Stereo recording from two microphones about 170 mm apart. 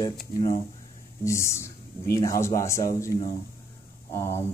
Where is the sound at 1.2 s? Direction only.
15° left (ahead or behind).